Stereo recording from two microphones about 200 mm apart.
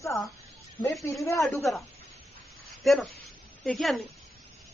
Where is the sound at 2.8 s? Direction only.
Centre (ahead or behind).